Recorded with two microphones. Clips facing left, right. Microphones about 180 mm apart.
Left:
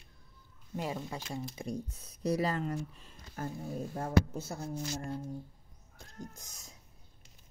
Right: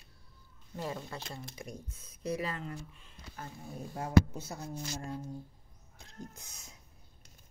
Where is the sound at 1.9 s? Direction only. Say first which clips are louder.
Left 3 dB; 35° left (ahead or behind).